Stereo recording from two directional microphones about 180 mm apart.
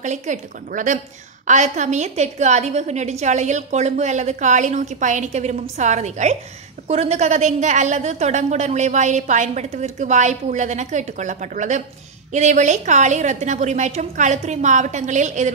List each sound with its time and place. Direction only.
0.0 s a woman's voice: 45° right (ahead or behind)